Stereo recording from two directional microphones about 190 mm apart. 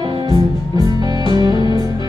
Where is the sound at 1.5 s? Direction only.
25° left (ahead or behind).